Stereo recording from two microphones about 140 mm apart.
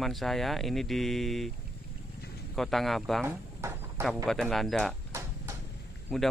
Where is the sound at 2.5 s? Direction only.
Centre (ahead or behind).